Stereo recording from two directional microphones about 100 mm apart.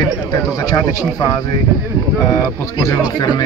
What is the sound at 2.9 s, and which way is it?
Speech, 40° left (ahead or behind).